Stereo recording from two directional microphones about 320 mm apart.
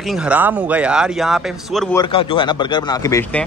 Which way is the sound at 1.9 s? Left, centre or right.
Centre.